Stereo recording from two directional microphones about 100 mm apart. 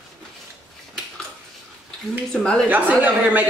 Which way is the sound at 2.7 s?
15° right (ahead or behind).